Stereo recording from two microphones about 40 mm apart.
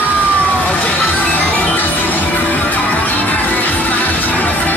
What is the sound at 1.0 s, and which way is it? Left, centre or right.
Music, left.